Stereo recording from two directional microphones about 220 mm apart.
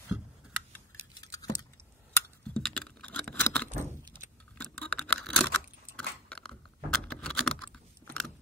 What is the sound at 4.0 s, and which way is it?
Keys jangling, 20° right (ahead or behind).